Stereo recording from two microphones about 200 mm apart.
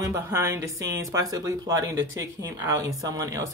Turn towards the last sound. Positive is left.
turn(degrees=-15)  # may be behind; listen again after turning